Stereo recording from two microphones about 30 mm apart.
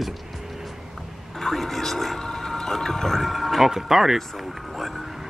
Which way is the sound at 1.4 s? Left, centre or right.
Centre.